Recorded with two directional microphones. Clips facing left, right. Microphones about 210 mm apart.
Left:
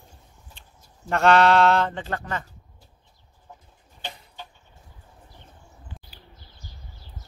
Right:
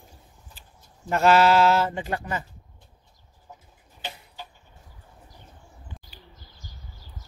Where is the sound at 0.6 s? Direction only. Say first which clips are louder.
Even; 5° right (ahead or behind).